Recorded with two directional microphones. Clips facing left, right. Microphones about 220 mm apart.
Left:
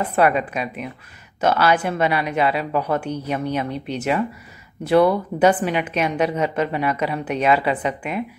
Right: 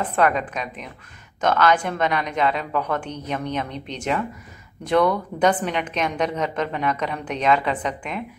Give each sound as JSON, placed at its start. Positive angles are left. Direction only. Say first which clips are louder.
{"t": 0.0, "sound": "a woman's voice", "louder": "left 2 dB", "side_deg": 10}